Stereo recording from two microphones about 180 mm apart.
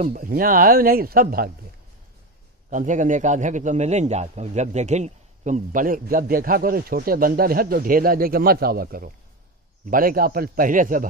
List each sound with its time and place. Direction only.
0.0 s speech: 50° right (ahead or behind)
2.7 s a man's voice: 45° right (ahead or behind)